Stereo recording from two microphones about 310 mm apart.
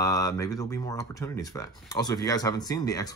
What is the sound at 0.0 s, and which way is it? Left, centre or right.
Speech, centre.